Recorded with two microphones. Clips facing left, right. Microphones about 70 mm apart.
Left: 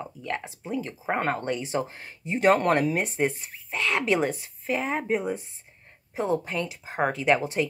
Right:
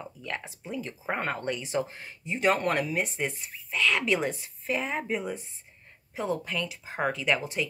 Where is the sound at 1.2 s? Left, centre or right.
Left.